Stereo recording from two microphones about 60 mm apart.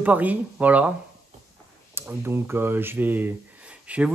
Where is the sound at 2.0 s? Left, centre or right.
Right.